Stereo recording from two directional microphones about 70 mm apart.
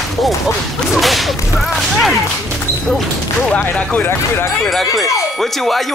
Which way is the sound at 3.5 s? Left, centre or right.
Left.